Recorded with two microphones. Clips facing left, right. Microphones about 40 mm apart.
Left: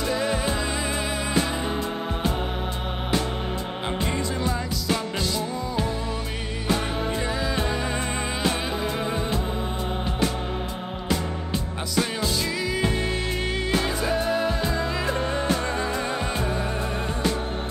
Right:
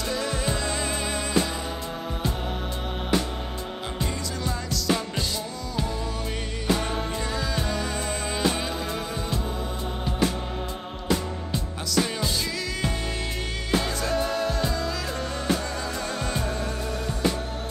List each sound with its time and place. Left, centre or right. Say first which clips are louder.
0.0 s music: left 3 dB; left
14.0 s music: left 2 dB; centre